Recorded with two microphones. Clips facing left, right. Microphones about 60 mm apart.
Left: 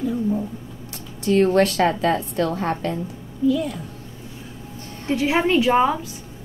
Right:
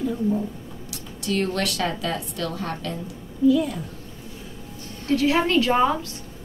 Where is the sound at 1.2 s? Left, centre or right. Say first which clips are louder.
Left 8 dB; left.